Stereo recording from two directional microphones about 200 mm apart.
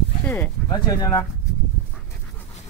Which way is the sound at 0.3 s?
15° left (ahead or behind).